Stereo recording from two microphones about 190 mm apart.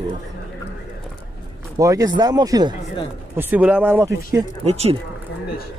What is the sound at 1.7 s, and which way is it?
Speech, 20° right (ahead or behind).